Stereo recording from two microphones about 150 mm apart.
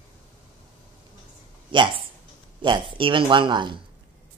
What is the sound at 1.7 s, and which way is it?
Speech, 35° right (ahead or behind).